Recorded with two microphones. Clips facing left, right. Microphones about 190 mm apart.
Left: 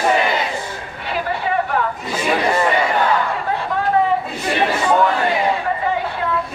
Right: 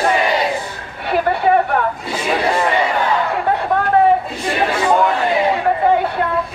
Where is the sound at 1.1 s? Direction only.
60° right (ahead or behind).